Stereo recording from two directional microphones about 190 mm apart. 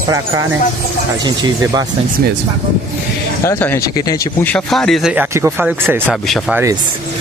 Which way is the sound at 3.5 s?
10° left (ahead or behind).